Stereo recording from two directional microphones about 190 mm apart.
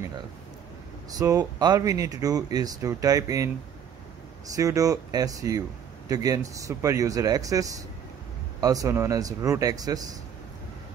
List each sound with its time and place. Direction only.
1.1 s speech: 20° right (ahead or behind)
4.6 s speech: 20° right (ahead or behind)